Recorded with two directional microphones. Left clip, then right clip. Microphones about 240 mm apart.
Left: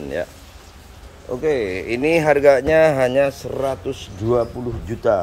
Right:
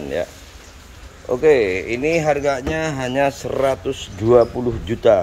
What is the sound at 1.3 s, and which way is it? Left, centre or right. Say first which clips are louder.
Speech: right 6 dB; centre.